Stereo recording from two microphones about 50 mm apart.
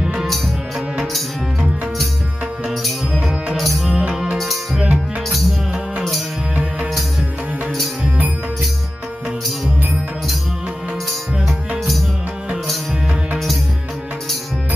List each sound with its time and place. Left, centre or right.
0.0 s music: centre
3.5 s music: centre
6.5 s music: right